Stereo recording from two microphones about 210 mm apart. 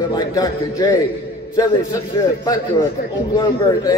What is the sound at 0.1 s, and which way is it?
Speech, 20° left (ahead or behind).